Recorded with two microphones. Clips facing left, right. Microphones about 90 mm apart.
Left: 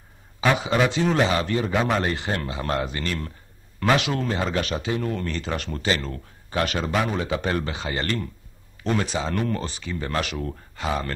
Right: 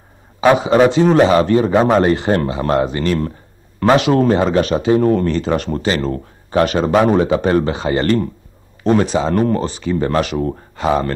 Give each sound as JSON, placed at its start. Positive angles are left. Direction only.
{"t": 0.4, "sound": "speech", "side_deg": -35}
{"t": 4.5, "sound": "speech", "side_deg": -35}